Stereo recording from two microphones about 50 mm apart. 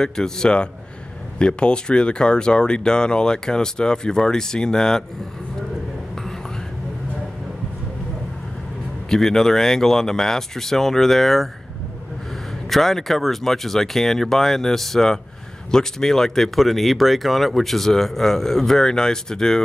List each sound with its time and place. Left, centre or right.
0.0 s speech: centre
9.1 s speech: centre
12.6 s speech: centre